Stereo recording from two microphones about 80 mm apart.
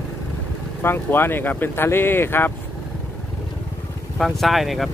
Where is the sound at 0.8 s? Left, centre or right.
Left.